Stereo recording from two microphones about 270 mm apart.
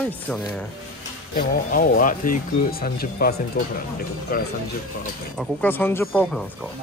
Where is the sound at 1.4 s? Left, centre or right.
Left.